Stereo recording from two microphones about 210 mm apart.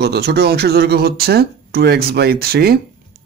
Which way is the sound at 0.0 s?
50° right (ahead or behind).